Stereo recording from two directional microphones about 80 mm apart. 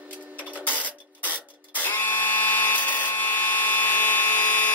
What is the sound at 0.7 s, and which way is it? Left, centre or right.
Printer, centre.